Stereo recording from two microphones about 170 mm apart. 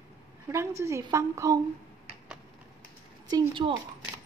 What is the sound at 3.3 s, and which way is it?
Speech, 30° right (ahead or behind).